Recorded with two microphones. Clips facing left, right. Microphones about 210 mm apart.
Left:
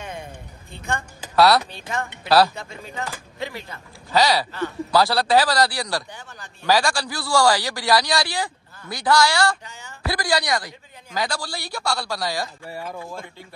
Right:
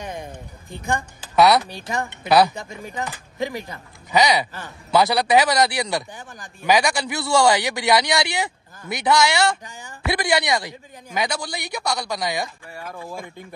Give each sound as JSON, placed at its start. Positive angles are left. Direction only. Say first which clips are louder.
{"t": 0.0, "sound": "a sound", "louder": "right 2 dB", "side_deg": -15}
{"t": 2.2, "sound": "a man's voice", "louder": "right 1 dB", "side_deg": -20}
{"t": 12.7, "sound": "speech", "louder": "left 6 dB", "side_deg": 5}